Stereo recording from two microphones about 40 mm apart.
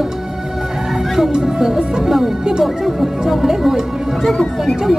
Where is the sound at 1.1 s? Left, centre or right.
Centre.